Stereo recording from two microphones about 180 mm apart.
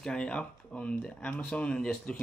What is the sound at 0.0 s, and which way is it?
Speech, 5° left (ahead or behind).